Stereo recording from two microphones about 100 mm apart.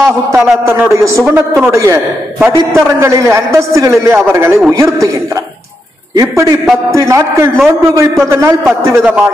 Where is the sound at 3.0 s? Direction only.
30° right (ahead or behind).